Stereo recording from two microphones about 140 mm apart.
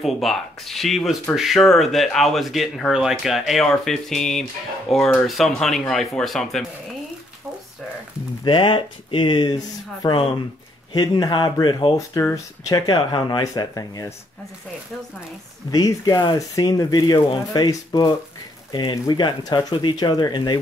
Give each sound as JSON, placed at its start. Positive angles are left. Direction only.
{"t": 0.0, "sound": "speech", "side_deg": 0}
{"t": 8.5, "sound": "speech", "side_deg": 35}
{"t": 12.2, "sound": "speech", "side_deg": 20}
{"t": 15.7, "sound": "speech", "side_deg": 25}